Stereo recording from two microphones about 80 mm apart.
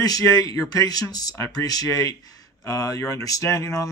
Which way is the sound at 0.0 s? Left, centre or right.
Left.